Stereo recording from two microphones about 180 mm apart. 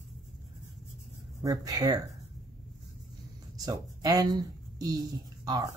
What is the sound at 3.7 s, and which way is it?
Speech, 20° right (ahead or behind).